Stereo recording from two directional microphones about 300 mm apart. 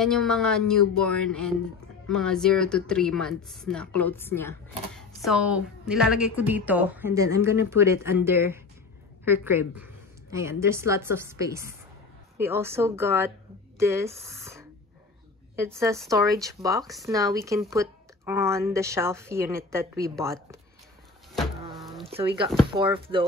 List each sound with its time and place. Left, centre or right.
0.0 s a woman's voice: centre
16.8 s speech: centre
17.1 s a woman's voice: centre
21.4 s a sound: centre
22.7 s a woman's voice: centre